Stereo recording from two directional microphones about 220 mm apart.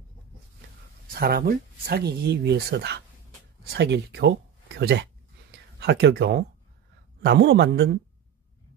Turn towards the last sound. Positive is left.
turn(degrees=-50)  # may be behind; listen again after turning